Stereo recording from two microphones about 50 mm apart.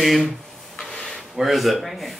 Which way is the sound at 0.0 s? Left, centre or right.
Centre.